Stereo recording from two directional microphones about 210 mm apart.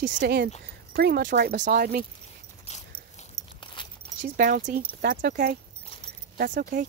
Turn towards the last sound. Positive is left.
turn(degrees=-40)  # may be behind; listen again after turning